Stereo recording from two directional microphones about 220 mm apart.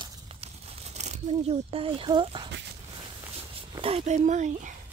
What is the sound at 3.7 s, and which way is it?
Speech, 25° right (ahead or behind).